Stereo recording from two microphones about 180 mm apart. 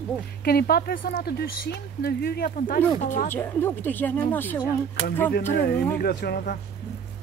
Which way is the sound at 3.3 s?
10° left (ahead or behind).